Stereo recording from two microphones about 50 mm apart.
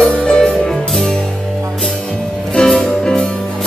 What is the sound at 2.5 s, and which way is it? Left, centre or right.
Music, centre.